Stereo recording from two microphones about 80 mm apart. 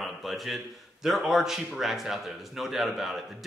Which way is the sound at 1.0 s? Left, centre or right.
Centre.